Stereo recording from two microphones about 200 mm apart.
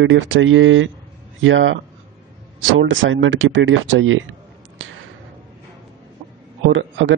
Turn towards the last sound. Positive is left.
turn(degrees=-75)  # may be behind; listen again after turning